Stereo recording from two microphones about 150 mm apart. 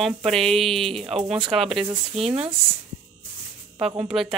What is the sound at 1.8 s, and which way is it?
Speech, 40° right (ahead or behind).